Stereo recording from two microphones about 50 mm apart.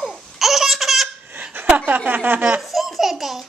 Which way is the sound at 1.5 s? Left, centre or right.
Right.